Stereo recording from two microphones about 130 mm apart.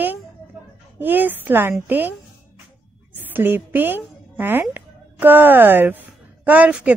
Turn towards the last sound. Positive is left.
turn(degrees=-10)  # may be behind; listen again after turning